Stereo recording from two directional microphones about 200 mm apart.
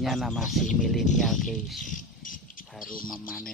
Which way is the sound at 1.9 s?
40° left (ahead or behind).